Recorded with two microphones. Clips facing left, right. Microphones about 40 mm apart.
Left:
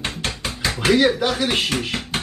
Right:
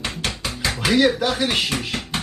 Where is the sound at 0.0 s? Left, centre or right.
Left.